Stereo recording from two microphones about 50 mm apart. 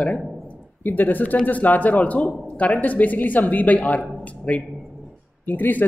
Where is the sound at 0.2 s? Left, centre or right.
Centre.